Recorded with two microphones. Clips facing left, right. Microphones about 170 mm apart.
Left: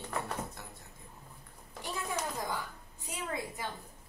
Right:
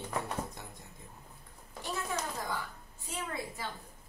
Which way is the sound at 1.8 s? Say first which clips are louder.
Even; 15° left (ahead or behind).